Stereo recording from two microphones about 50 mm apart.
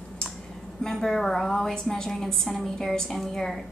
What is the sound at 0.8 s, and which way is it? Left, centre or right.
A woman's voice, centre.